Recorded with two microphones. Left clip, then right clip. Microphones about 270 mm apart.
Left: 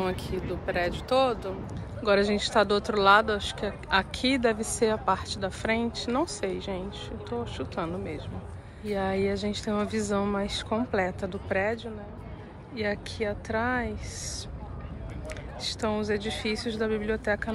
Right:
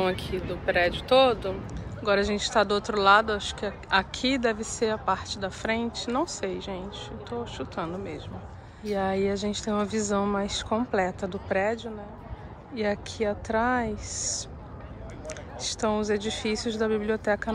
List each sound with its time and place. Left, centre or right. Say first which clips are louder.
0.0 s speech: right 3 dB; centre
2.0 s speech: left 1 dB; centre
15.7 s speech: right 3 dB; centre